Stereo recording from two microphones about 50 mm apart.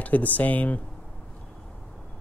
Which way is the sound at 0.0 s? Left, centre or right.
Left.